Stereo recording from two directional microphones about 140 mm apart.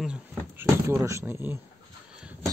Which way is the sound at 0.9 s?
20° right (ahead or behind).